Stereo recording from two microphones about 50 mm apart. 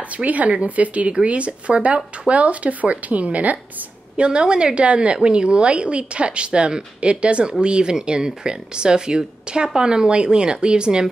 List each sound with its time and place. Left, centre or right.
0.2 s a woman's voice: right